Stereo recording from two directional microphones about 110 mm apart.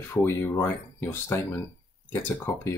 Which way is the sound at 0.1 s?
20° left (ahead or behind).